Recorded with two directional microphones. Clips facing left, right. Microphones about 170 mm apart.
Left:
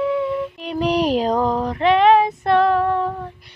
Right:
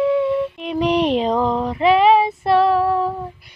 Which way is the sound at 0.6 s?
Centre (ahead or behind).